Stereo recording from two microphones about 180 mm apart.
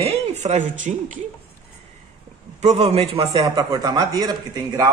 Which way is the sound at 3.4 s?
20° right (ahead or behind).